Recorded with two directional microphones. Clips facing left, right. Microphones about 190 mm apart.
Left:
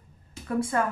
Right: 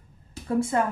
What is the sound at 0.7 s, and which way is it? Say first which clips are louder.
Speech: right 1 dB; 20° right (ahead or behind).